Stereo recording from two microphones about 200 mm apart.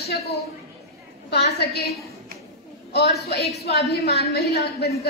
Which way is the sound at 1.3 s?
55° left (ahead or behind).